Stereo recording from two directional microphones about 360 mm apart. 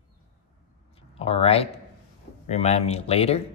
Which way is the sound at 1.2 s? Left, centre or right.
Centre.